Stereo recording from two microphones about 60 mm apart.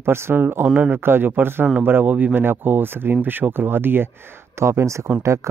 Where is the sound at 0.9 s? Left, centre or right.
Right.